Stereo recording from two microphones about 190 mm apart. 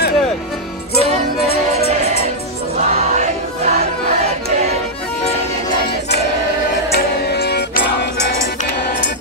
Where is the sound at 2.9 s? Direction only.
35° right (ahead or behind).